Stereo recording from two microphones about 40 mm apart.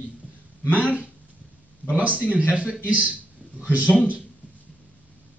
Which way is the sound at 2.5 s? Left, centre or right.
Right.